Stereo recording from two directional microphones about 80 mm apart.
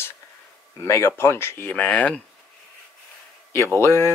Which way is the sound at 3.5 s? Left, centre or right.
Left.